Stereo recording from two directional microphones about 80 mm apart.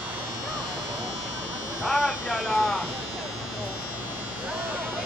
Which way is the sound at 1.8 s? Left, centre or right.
Centre.